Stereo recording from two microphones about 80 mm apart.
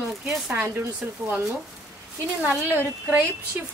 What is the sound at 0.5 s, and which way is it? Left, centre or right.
Speech, right.